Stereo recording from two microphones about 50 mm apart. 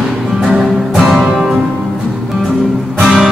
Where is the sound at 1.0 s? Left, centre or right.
Centre.